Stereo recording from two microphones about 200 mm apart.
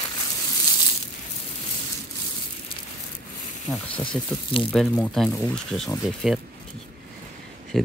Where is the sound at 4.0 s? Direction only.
25° left (ahead or behind).